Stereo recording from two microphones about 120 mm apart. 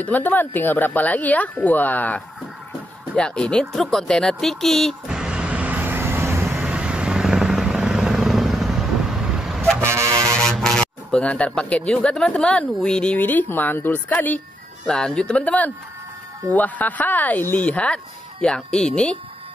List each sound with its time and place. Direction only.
0.0 s speech: 15° left (ahead or behind); by 6.4 s 20° right (ahead or behind)
6.5 s vehicle: 10° right (ahead or behind)
9.8 s vehicle: 20° right (ahead or behind)
10.3 s speech: 5° left (ahead or behind)